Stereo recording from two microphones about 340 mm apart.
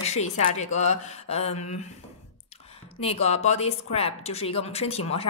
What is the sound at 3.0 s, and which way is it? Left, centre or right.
A woman's voice, centre.